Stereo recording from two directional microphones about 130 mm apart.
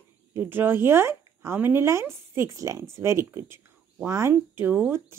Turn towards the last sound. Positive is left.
turn(degrees=-15)  # may be behind; listen again after turning